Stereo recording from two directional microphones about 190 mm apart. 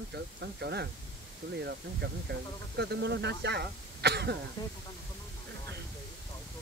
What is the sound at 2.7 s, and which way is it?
Speech, 60° right (ahead or behind).